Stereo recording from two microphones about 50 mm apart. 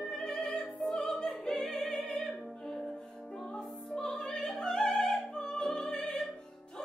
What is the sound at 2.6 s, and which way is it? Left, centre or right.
Music, centre.